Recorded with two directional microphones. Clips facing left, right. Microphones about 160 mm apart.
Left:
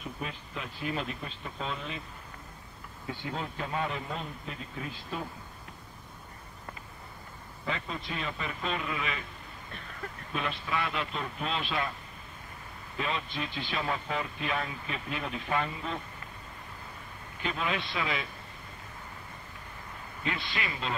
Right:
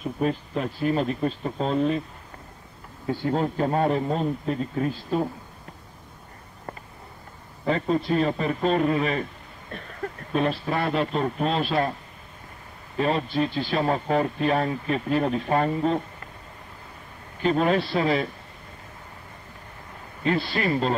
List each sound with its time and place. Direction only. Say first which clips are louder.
0.0 s a man's voice: right 13 dB; 40° right (ahead or behind)
3.1 s a man's voice: right 12 dB; 45° right (ahead or behind)
7.6 s a man's voice: right 13 dB; 40° right (ahead or behind)
10.3 s a man's voice: right 9 dB; 40° right (ahead or behind)
12.9 s a man's voice: right 10 dB; 40° right (ahead or behind)
17.4 s a man's voice: right 12 dB; 40° right (ahead or behind)
20.2 s a man's voice: right 11 dB; 40° right (ahead or behind)